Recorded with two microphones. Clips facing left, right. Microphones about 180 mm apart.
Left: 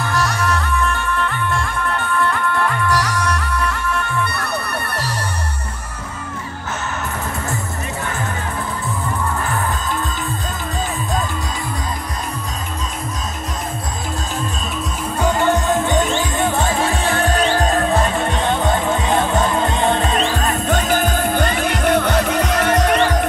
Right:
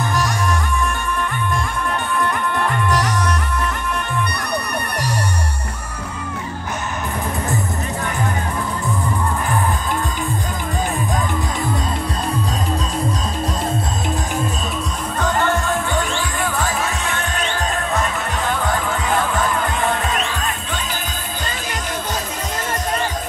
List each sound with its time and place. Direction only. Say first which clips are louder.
0.0 s music: left 1 dB; 15° right (ahead or behind)
2.9 s music: even; 20° right (ahead or behind)
15.1 s music: left 3 dB; 15° left (ahead or behind); by 23.1 s 75° left (ahead or behind)